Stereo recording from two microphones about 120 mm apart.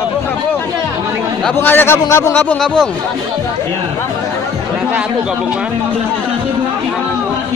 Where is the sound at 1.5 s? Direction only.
20° left (ahead or behind).